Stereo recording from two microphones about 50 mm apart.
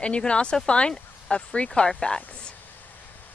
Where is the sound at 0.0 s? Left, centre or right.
Left.